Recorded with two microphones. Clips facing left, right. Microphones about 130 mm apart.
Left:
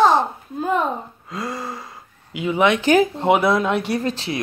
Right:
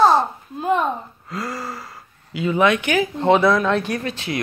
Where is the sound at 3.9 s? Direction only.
30° left (ahead or behind).